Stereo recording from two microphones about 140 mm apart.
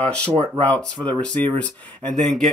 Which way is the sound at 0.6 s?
10° left (ahead or behind).